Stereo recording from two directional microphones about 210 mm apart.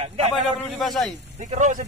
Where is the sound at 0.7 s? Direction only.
Centre (ahead or behind).